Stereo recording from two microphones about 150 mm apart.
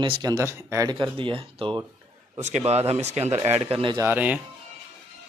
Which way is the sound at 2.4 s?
50° right (ahead or behind).